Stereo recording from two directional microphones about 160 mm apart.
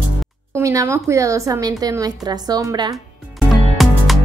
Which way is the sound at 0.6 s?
20° right (ahead or behind).